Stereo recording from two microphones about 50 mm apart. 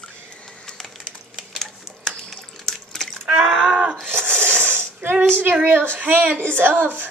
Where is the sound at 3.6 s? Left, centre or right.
Right.